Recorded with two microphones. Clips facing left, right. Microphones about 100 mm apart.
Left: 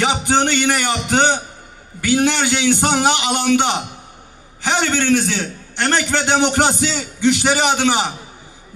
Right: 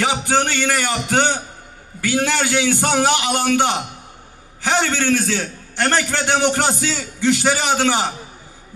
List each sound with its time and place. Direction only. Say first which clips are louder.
0.0 s a man's voice: left 2 dB; 20° left (ahead or behind)